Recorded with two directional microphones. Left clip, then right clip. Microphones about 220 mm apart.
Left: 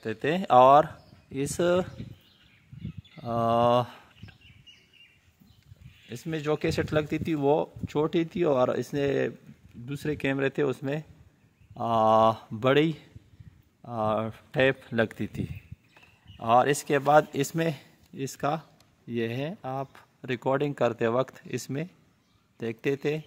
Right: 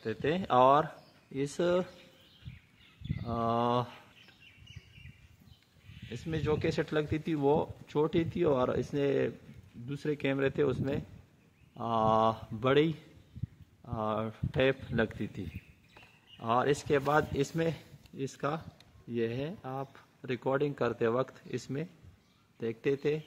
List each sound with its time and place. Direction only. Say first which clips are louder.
0.0 s speech: left 4 dB; 50° left (ahead or behind)
3.2 s bird: left 7 dB; 50° left (ahead or behind)
6.0 s speech: left 4 dB; 50° left (ahead or behind)